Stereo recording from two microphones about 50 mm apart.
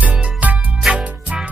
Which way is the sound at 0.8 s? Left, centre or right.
Centre.